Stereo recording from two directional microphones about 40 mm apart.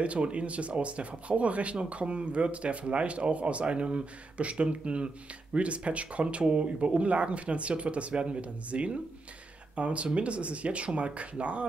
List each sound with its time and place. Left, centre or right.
0.0 s speech: right